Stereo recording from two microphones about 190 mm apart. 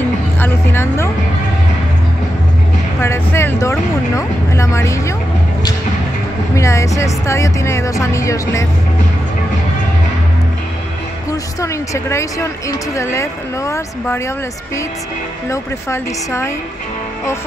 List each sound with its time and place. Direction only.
0.4 s speech: 10° left (ahead or behind)
3.0 s speech: 15° left (ahead or behind)
6.5 s speech: 15° left (ahead or behind)
11.2 s speech: 15° left (ahead or behind)
15.5 s speech: 15° left (ahead or behind)